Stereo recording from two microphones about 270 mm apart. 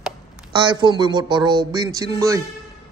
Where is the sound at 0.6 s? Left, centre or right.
Centre.